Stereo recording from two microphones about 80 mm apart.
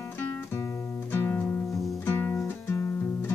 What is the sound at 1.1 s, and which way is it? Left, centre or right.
Music, left.